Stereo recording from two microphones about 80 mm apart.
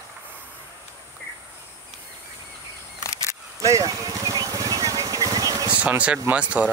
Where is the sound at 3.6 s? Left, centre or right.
Right.